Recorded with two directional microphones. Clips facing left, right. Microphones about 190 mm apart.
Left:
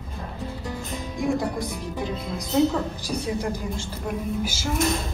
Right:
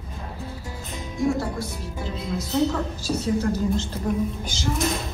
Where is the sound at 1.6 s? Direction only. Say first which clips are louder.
Left 3 dB; 15° left (ahead or behind).